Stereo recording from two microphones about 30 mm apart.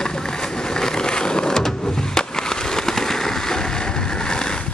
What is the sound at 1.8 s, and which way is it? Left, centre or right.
Skateboard, left.